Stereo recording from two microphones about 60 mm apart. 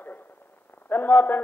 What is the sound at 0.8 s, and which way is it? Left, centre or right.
Speech, left.